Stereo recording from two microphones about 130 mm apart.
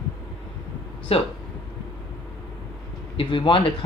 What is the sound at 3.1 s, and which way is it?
Speech, 40° left (ahead or behind).